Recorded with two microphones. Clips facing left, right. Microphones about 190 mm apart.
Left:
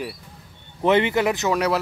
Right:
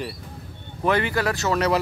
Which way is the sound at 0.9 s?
20° left (ahead or behind).